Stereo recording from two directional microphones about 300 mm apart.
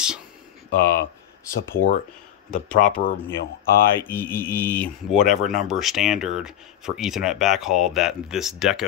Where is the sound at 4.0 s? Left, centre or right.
Centre.